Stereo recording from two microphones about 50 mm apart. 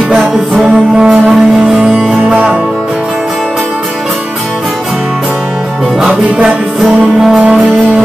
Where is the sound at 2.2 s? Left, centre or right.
Right.